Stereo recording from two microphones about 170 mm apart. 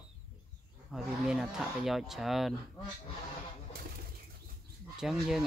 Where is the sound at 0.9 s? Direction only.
Centre (ahead or behind).